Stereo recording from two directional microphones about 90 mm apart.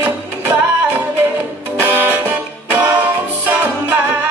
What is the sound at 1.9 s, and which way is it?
Music, 20° right (ahead or behind).